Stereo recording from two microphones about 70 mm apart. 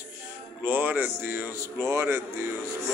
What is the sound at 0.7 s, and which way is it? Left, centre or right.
A man's voice, right.